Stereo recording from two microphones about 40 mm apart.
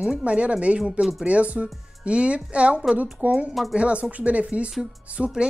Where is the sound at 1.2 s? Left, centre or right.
Right.